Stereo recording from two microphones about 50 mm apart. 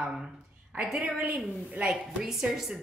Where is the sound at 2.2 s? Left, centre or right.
Centre.